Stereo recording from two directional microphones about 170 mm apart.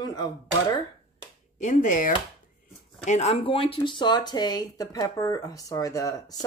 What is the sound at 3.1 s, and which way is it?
Speech, 40° left (ahead or behind).